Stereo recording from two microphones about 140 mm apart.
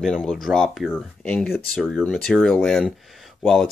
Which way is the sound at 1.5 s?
Centre (ahead or behind).